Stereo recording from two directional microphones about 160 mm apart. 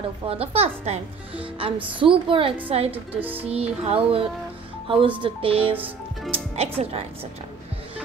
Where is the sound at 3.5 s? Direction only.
40° right (ahead or behind).